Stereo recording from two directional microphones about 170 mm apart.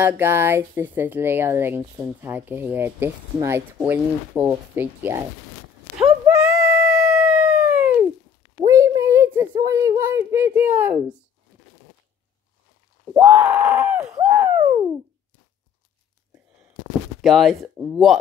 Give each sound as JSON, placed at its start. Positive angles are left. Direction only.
{"t": 0.0, "sound": "speech", "side_deg": -15}
{"t": 5.9, "sound": "a sound", "side_deg": -5}
{"t": 6.4, "sound": "howl", "side_deg": -5}
{"t": 8.5, "sound": "a sound", "side_deg": -20}
{"t": 9.5, "sound": "speech", "side_deg": -20}
{"t": 13.1, "sound": "speech", "side_deg": -10}
{"t": 17.2, "sound": "speech", "side_deg": 0}